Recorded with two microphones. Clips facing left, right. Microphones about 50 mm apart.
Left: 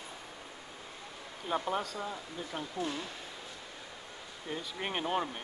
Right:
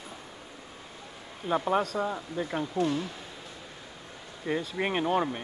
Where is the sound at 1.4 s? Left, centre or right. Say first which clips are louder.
Right 5 dB; centre.